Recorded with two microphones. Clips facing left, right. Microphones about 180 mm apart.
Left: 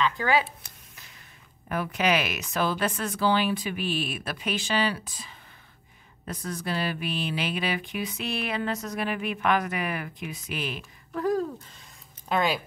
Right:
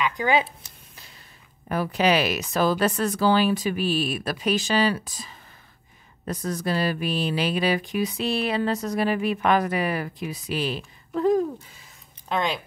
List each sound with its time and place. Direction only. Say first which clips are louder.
0.0 s speech: right 2 dB; 20° right (ahead or behind)
1.7 s speech: right 4 dB; 35° right (ahead or behind)
11.6 s speech: even; 5° right (ahead or behind)